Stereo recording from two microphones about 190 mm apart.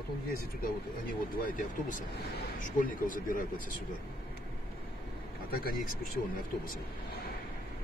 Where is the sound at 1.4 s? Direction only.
45° left (ahead or behind).